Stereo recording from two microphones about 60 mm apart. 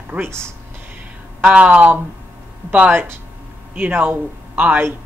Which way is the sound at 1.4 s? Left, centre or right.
Right.